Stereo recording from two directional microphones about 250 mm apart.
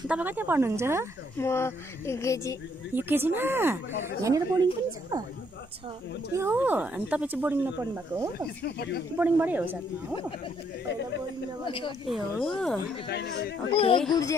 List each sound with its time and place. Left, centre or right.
0.1 s speech: centre
1.4 s speech: centre
2.9 s speech: centre
6.3 s speech: centre
8.6 s speech: left
9.2 s speech: centre
11.6 s speech: centre
12.1 s speech: centre
13.0 s speech: left
13.7 s speech: left